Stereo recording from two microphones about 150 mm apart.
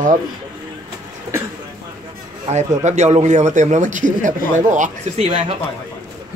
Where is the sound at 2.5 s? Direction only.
45° right (ahead or behind).